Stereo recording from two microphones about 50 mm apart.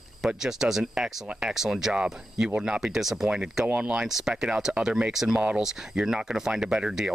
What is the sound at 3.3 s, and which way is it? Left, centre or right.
Speech, right.